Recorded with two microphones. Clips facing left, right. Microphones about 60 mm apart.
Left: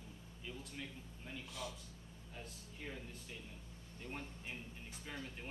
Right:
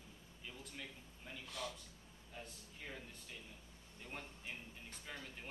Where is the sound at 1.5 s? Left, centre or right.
Right.